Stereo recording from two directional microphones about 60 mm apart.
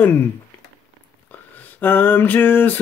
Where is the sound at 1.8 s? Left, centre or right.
Left.